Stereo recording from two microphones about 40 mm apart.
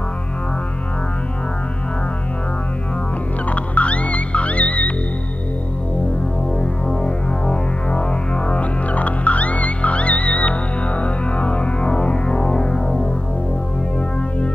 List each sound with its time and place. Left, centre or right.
3.4 s music: left
6.6 s music: left